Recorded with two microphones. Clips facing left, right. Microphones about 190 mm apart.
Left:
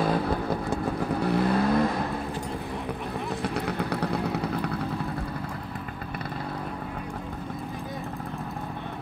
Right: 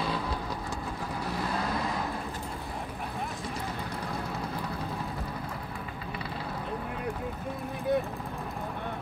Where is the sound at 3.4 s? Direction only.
70° left (ahead or behind).